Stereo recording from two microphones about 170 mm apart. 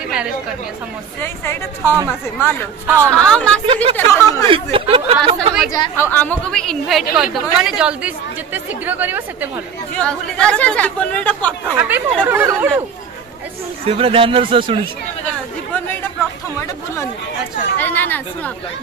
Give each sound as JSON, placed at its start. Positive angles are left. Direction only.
{"t": 1.2, "sound": "speech", "side_deg": 15}
{"t": 2.9, "sound": "a woman's voice", "side_deg": -15}
{"t": 3.2, "sound": "speech", "side_deg": 5}
{"t": 3.6, "sound": "speech", "side_deg": -35}
{"t": 3.9, "sound": "speech", "side_deg": 15}
{"t": 4.5, "sound": "speech", "side_deg": -30}
{"t": 5.7, "sound": "a woman's voice", "side_deg": 15}
{"t": 9.9, "sound": "speech", "side_deg": 5}
{"t": 11.7, "sound": "a woman's voice", "side_deg": -10}
{"t": 13.8, "sound": "speech", "side_deg": -35}
{"t": 17.7, "sound": "speech", "side_deg": 10}